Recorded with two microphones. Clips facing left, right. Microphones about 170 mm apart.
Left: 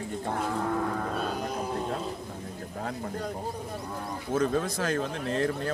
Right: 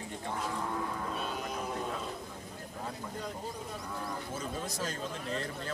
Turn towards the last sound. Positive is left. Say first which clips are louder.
# left 9 dB
turn(degrees=65)  # may be behind; listen again after turning